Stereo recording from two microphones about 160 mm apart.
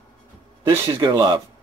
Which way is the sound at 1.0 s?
25° right (ahead or behind).